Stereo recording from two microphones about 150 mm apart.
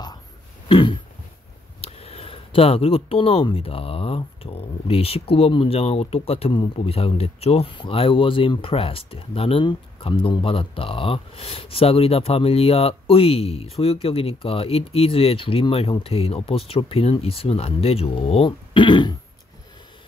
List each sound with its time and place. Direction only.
0.7 s throat clearing: 35° left (ahead or behind)
1.8 s speech: 40° left (ahead or behind)